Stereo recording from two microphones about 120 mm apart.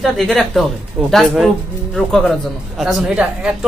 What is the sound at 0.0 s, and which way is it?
A man's voice, centre (ahead or behind).